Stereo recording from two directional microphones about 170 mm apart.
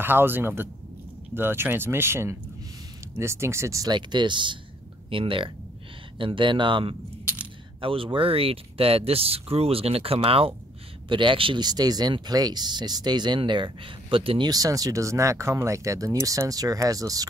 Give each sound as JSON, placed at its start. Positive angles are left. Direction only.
{"t": 0.0, "sound": "speech", "side_deg": -10}